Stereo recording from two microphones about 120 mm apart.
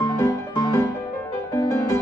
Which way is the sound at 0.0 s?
25° left (ahead or behind).